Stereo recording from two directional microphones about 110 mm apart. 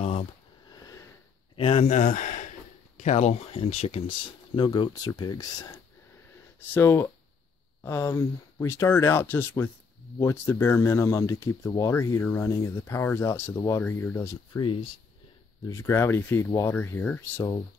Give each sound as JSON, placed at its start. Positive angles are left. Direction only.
{"t": 1.6, "sound": "speech", "side_deg": 65}
{"t": 4.6, "sound": "speech", "side_deg": 45}
{"t": 6.7, "sound": "speech", "side_deg": 20}
{"t": 14.6, "sound": "speech", "side_deg": 50}
{"t": 15.6, "sound": "speech", "side_deg": 25}